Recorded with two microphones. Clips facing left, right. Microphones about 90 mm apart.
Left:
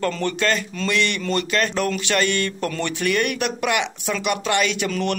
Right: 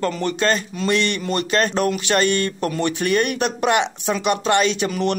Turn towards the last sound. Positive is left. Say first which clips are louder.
# right 2 dB
turn(degrees=-20)  # may be behind; listen again after turning